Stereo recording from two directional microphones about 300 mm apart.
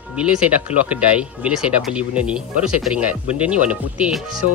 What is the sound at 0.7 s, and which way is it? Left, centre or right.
Speech, left.